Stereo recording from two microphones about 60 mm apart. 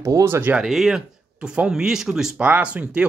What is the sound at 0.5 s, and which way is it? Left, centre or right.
Speech, centre.